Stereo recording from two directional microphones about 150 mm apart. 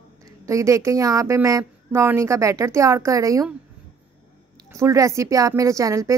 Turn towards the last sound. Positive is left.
turn(degrees=-20)  # may be behind; listen again after turning